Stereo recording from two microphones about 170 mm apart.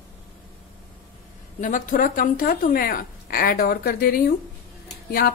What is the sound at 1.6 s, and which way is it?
A woman's voice, 50° left (ahead or behind).